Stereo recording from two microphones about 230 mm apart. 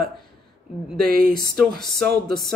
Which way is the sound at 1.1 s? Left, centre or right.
Right.